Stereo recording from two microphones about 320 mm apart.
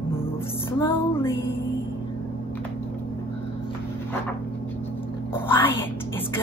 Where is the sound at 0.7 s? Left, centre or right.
Centre.